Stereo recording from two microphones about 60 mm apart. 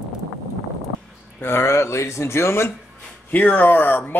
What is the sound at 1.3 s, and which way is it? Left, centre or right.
Speech, left.